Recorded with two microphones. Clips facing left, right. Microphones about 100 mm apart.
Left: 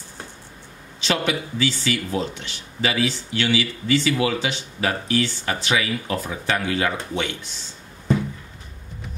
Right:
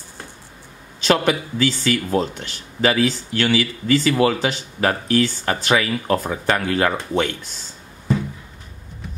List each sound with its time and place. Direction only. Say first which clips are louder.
1.0 s speech: right 5 dB; 45° right (ahead or behind)